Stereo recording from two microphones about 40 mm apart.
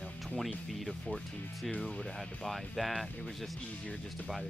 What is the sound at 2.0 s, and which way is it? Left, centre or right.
Speech, centre.